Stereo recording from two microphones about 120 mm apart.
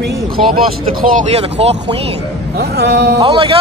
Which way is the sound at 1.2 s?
60° right (ahead or behind).